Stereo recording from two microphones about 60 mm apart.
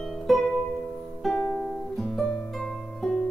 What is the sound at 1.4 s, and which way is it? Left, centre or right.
Music, left.